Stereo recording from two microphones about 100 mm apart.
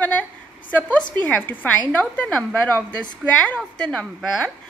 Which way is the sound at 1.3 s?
20° left (ahead or behind).